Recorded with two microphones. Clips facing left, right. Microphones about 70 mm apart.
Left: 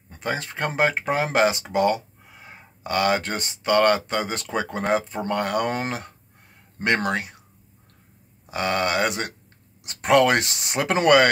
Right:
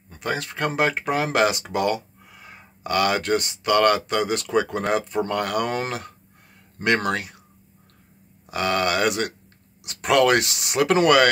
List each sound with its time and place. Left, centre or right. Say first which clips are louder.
0.2 s speech: right 1 dB; left
8.5 s speech: right 1 dB; left